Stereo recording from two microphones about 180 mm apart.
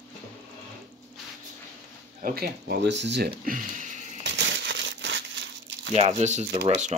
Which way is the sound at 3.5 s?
45° right (ahead or behind).